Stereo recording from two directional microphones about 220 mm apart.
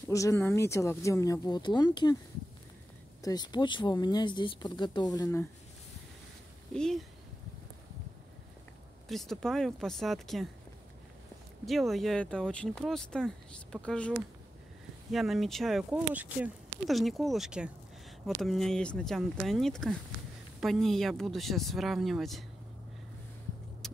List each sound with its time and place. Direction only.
0.1 s speech: 15° left (ahead or behind)
3.2 s speech: 15° left (ahead or behind)
6.7 s speech: centre (ahead or behind)
9.1 s speech: centre (ahead or behind)
11.6 s speech: centre (ahead or behind)